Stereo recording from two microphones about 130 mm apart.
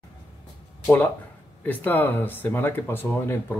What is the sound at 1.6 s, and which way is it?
Speech, 15° left (ahead or behind).